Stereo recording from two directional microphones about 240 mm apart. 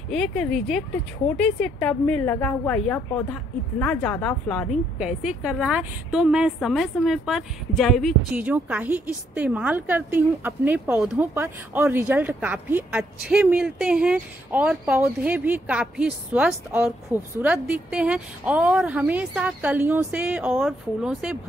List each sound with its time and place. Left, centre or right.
0.1 s a woman's voice: centre